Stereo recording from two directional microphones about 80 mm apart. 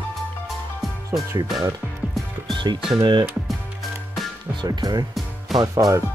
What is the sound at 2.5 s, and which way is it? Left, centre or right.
Music, right.